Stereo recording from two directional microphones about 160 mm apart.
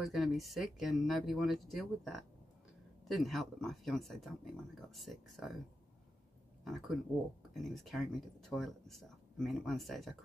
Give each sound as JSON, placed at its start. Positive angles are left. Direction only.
{"t": 0.0, "sound": "speech", "side_deg": 0}
{"t": 6.6, "sound": "speech", "side_deg": 0}